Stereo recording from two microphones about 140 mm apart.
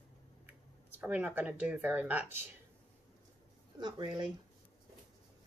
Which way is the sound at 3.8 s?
30° right (ahead or behind).